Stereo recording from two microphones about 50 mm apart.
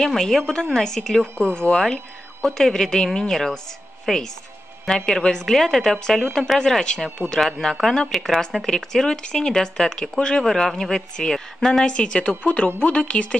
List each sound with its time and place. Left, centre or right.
0.0 s speech: centre
11.8 s speech: centre